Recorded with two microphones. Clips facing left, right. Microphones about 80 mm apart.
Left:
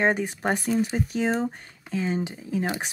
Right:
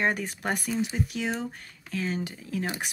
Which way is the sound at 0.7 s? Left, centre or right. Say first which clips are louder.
Left 4 dB; left.